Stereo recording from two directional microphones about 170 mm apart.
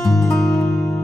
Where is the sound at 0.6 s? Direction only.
15° left (ahead or behind).